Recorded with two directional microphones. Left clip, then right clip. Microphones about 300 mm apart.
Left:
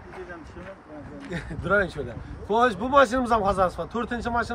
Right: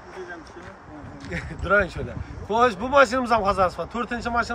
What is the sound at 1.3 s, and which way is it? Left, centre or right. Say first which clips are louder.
Speech: right 3 dB; centre.